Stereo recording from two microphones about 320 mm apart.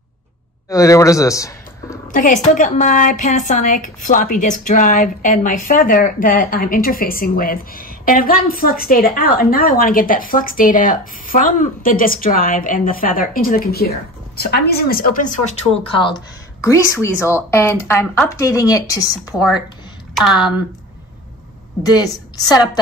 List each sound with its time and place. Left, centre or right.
0.7 s speech: centre
2.1 s a woman's voice: left
20.2 s speech: centre